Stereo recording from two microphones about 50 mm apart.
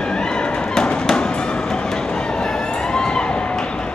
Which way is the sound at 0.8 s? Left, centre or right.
Centre.